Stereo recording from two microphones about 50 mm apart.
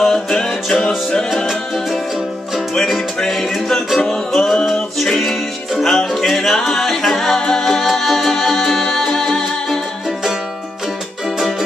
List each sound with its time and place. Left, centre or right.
0.0 s music: centre
3.2 s music: centre